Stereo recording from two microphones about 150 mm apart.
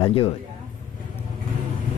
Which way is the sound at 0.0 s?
40° left (ahead or behind).